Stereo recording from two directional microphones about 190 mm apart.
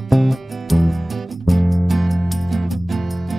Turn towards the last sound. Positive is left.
turn(degrees=0)  # may be behind; listen again after turning